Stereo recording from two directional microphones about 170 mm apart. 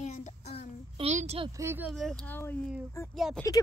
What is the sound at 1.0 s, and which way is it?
Speech, 40° right (ahead or behind).